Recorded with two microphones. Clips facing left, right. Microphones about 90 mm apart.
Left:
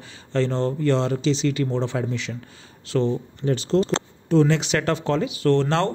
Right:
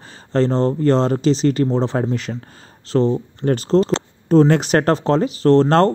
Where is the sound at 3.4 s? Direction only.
55° right (ahead or behind).